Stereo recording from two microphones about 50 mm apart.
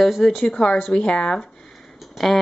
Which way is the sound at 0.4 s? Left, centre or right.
Centre.